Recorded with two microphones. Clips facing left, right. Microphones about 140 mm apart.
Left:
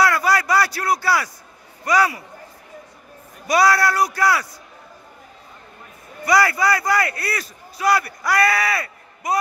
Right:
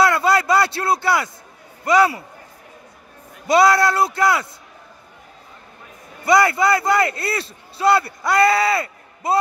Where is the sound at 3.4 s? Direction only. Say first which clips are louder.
Right 2 dB; 25° right (ahead or behind).